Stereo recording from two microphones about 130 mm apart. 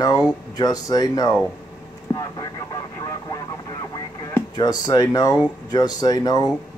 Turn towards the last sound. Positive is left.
turn(degrees=30)  # may be behind; listen again after turning